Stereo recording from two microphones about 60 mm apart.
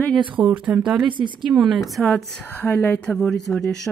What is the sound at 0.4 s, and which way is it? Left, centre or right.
Speech, right.